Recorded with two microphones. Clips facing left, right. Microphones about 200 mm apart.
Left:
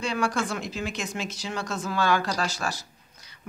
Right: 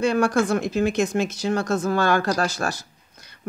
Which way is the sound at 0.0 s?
50° right (ahead or behind).